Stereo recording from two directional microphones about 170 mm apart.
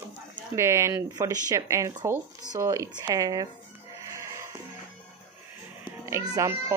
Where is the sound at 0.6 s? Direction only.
15° right (ahead or behind).